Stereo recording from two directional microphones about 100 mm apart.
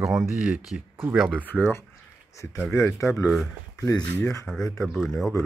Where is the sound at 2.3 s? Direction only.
30° left (ahead or behind).